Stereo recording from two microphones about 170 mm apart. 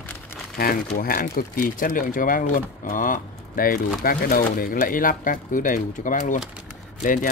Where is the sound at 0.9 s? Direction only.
55° left (ahead or behind).